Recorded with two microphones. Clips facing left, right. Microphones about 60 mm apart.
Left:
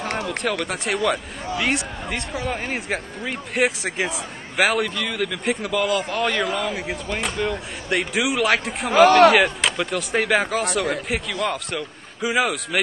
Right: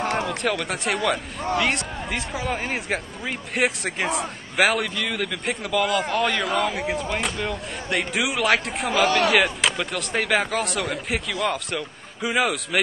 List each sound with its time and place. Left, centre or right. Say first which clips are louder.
0.4 s speech: even; centre
8.9 s speech: left 8 dB; left
9.3 s speech: left 2 dB; centre